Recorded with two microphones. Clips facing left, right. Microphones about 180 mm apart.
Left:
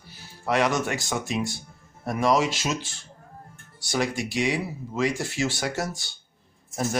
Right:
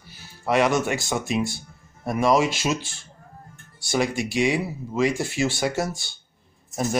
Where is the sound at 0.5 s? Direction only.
15° right (ahead or behind).